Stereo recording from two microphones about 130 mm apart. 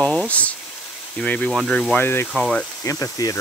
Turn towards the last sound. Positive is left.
turn(degrees=25)  # may be behind; listen again after turning